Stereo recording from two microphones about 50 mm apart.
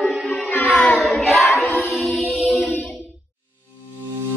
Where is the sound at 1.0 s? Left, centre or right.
Centre.